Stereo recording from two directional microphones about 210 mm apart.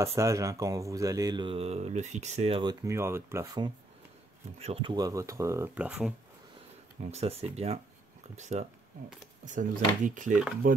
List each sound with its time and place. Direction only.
0.0 s speech: 15° right (ahead or behind)
4.6 s speech: 30° right (ahead or behind); by 6.1 s 5° right (ahead or behind)
7.0 s speech: 30° right (ahead or behind)